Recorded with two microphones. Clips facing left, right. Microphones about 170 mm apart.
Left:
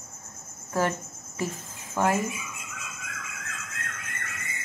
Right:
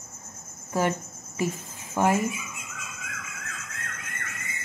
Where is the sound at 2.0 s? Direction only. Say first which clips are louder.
Right 2 dB; 15° right (ahead or behind).